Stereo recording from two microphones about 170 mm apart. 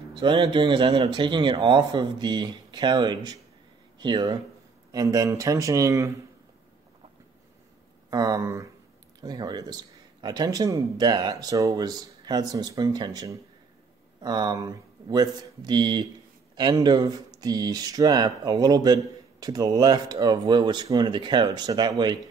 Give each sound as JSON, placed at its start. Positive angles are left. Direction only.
{"t": 0.1, "sound": "speech", "side_deg": -30}
{"t": 8.1, "sound": "speech", "side_deg": -20}